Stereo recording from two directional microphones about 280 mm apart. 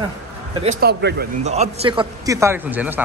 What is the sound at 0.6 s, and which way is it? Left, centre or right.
Speech, right.